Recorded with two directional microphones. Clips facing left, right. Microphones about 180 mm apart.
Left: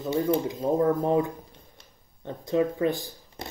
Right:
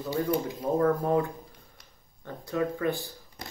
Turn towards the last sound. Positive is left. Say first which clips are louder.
# left 2 dB
turn(degrees=20)  # may be behind; listen again after turning